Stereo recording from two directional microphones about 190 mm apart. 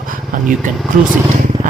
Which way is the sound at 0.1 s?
45° right (ahead or behind).